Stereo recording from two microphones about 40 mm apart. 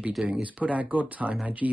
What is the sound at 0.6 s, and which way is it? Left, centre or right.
Speech, right.